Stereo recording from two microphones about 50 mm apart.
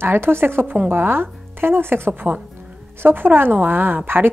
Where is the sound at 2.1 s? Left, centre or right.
Right.